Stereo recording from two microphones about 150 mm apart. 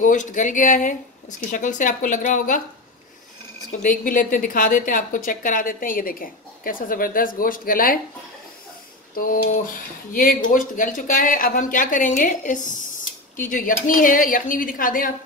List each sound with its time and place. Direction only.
0.0 s speech: 60° left (ahead or behind)
3.8 s a woman's voice: 60° left (ahead or behind)
9.1 s a woman's voice: 70° left (ahead or behind)